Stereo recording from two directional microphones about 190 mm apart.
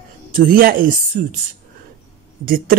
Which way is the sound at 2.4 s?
50° right (ahead or behind).